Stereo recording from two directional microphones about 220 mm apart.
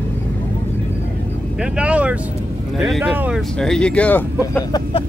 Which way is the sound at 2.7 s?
Centre (ahead or behind).